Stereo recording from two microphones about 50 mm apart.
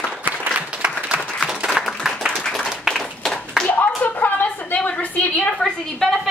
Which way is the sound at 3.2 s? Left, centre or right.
Centre.